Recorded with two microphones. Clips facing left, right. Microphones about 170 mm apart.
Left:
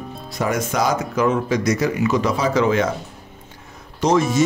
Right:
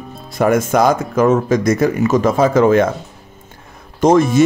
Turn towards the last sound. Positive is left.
turn(degrees=-50)  # may be behind; listen again after turning